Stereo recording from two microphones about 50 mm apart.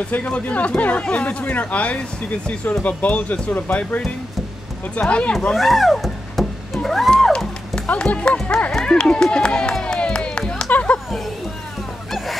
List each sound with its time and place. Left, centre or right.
0.1 s speech: left
5.0 s speech: left
5.5 s a sound: centre
7.3 s music: centre
7.9 s speech: left
8.4 s run: centre
10.7 s a sound: left